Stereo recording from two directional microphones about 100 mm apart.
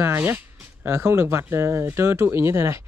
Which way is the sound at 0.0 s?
20° right (ahead or behind).